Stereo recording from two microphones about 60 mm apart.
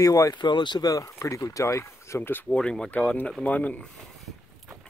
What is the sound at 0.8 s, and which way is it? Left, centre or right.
Speech, left.